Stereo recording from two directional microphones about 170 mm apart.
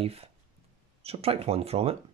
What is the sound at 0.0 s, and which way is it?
Speech, 35° right (ahead or behind).